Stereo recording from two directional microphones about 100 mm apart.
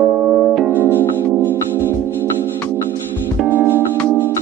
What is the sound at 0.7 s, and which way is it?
Music, 20° left (ahead or behind).